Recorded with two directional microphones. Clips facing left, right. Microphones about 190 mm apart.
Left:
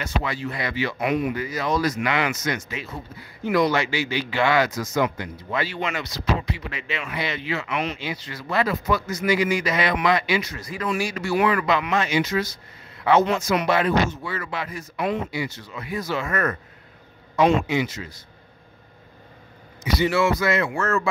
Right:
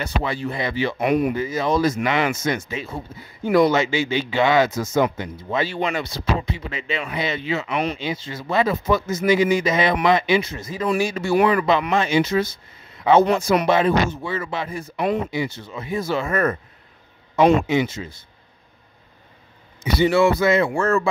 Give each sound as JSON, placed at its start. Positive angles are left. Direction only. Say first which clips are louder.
{"t": 0.0, "sound": "speech", "louder": "right 3 dB", "side_deg": -30}
{"t": 0.9, "sound": "speech", "louder": "right 5 dB", "side_deg": -50}
{"t": 1.3, "sound": "speech", "louder": "right 4 dB", "side_deg": -25}
{"t": 17.6, "sound": "speech", "louder": "right 4 dB", "side_deg": -25}
{"t": 20.0, "sound": "speech", "louder": "right 5 dB", "side_deg": -25}